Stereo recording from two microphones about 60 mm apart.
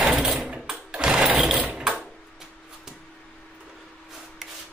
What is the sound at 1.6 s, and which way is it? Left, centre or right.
Mechanisms, centre.